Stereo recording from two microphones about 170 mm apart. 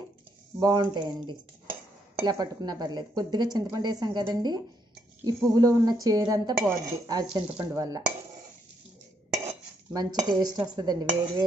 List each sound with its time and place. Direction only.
0.6 s speech: 25° right (ahead or behind)
9.9 s speech: 20° right (ahead or behind)